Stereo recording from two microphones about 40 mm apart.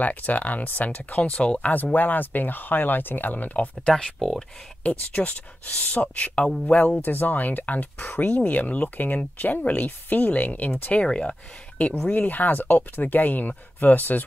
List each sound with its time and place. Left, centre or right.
0.0 s speech: left
1.7 s speech: left
4.2 s speech: centre
4.8 s speech: left
7.0 s speech: left
10.9 s speech: left
12.1 s speech: left